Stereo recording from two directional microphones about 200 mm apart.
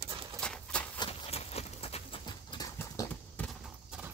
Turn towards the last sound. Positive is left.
turn(degrees=-5)  # may be behind; listen again after turning